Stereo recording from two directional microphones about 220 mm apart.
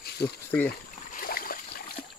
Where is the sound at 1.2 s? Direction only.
40° left (ahead or behind).